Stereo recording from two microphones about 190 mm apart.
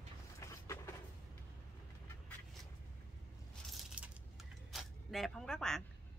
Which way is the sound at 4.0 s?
5° right (ahead or behind).